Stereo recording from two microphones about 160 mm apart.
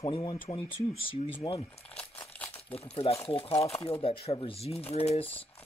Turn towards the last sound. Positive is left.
turn(degrees=35)  # may be behind; listen again after turning